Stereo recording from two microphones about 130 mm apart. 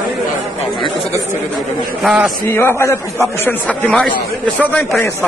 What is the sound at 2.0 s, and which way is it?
Speech, centre (ahead or behind).